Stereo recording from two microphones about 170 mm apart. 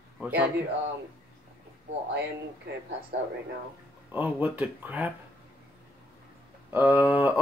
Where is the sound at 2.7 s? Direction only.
70° right (ahead or behind).